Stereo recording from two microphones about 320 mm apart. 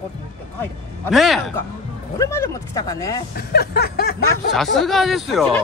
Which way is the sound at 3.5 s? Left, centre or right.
Left.